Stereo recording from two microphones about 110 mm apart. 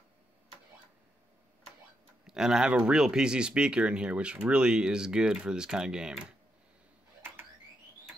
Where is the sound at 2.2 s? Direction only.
5° right (ahead or behind).